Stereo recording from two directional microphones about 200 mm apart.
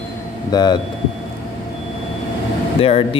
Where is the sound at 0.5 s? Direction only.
20° left (ahead or behind).